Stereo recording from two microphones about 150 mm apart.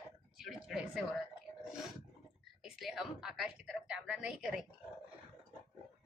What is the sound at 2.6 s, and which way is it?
A woman's voice, centre (ahead or behind).